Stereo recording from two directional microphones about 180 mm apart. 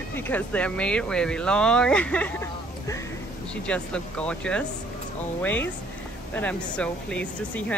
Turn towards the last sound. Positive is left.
turn(degrees=5)  # may be behind; listen again after turning